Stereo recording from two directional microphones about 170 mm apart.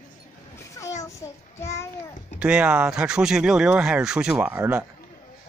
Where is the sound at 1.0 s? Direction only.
15° left (ahead or behind).